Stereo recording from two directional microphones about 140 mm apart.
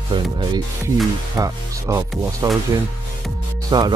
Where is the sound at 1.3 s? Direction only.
20° right (ahead or behind).